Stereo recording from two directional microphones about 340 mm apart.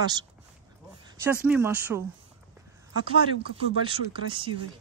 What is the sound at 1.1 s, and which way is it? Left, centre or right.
Speech, centre.